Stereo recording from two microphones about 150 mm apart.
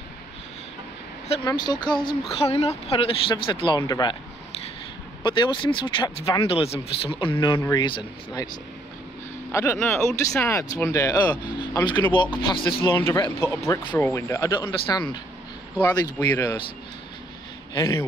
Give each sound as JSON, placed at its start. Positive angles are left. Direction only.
{"t": 1.6, "sound": "speech", "side_deg": 30}
{"t": 5.2, "sound": "speech", "side_deg": 30}
{"t": 6.4, "sound": "speech", "side_deg": 40}
{"t": 9.5, "sound": "speech", "side_deg": 20}
{"t": 9.8, "sound": "speech", "side_deg": 5}
{"t": 10.3, "sound": "speech", "side_deg": 15}
{"t": 11.4, "sound": "speech", "side_deg": 30}
{"t": 12.8, "sound": "speech", "side_deg": 15}
{"t": 17.7, "sound": "speech", "side_deg": 20}